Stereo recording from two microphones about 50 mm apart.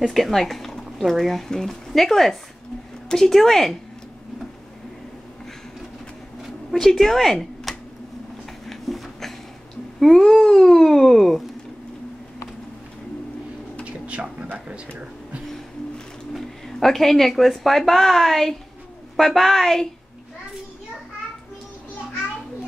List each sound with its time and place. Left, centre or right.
0.1 s speech: centre
6.4 s speech: centre
7.7 s a sound: centre
9.9 s speech: centre
13.8 s a sound: right
16.3 s speech: centre